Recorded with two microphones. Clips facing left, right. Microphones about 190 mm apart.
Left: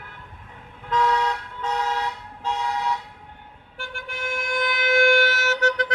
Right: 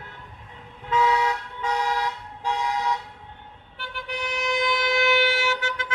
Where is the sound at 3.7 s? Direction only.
45° left (ahead or behind).